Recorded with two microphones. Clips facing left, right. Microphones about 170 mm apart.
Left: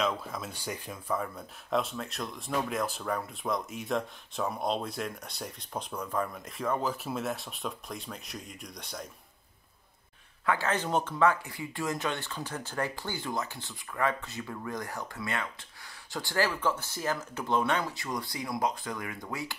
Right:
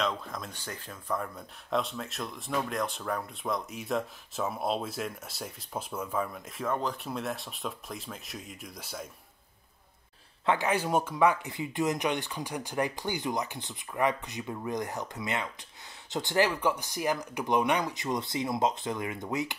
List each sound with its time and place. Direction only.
0.0 s speech: 5° left (ahead or behind)
1.1 s speech: centre (ahead or behind)
10.4 s speech: 20° right (ahead or behind)
10.7 s speech: 10° right (ahead or behind)